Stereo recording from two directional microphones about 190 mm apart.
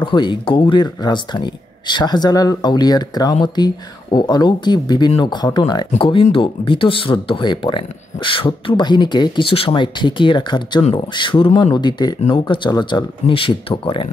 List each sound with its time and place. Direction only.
0.0 s speech: 25° left (ahead or behind)